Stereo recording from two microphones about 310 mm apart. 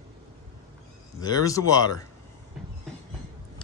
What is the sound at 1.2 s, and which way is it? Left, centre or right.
Speech, centre.